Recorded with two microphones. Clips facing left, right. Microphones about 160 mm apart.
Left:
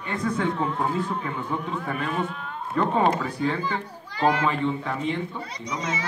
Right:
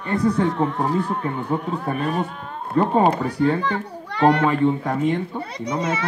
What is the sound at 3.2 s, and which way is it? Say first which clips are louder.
A child's voice: right 6 dB; 65° right (ahead or behind).